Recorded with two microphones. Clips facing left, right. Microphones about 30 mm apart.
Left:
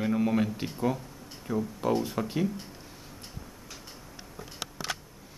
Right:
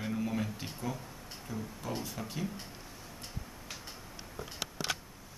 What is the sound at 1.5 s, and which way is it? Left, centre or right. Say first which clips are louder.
Speech: left 11 dB; left.